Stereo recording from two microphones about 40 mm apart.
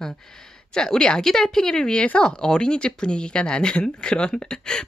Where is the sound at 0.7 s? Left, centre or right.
Centre.